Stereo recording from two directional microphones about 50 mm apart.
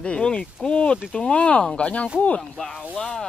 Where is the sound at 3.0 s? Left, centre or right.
Centre.